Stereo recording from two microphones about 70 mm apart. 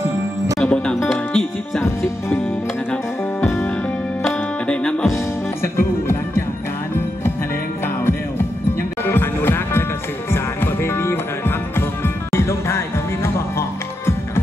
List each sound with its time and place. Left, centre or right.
0.6 s music: centre
3.4 s music: centre
5.8 s music: left
9.0 s music: left